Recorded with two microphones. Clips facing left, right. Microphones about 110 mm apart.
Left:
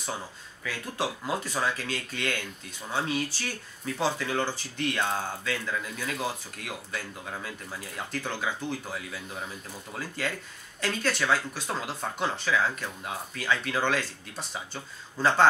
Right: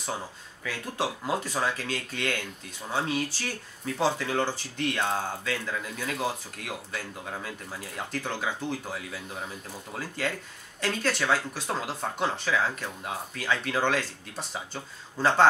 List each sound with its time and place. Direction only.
0.7 s speech: 50° right (ahead or behind)